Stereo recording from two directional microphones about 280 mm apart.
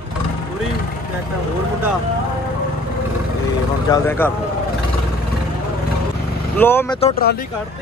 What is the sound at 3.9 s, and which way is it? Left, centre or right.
Speech, centre.